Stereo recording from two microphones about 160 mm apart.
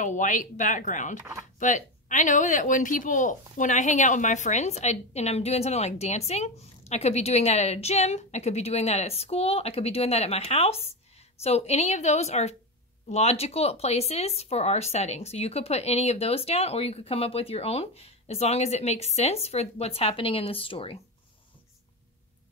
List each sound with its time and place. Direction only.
0.0 s speech: 50° left (ahead or behind); by 21.0 s 35° left (ahead or behind)